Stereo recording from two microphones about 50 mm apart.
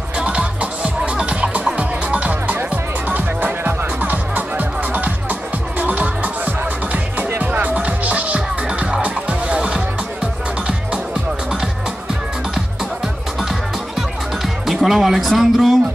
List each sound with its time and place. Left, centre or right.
0.2 s music: right
7.7 s music: right
13.4 s music: centre
14.7 s speech: centre